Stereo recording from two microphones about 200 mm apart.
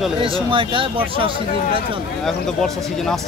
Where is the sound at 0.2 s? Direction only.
25° right (ahead or behind).